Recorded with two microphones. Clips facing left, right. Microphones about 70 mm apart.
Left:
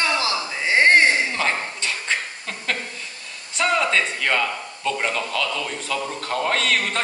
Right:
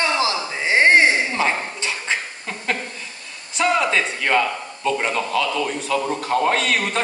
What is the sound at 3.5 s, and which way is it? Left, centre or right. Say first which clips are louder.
A man's voice: right 2 dB; centre.